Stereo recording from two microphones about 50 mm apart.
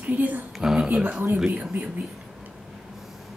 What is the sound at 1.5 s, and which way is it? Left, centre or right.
Speech, right.